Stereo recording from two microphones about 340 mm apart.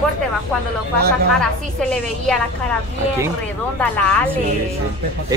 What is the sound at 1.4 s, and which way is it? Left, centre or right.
Speech, centre.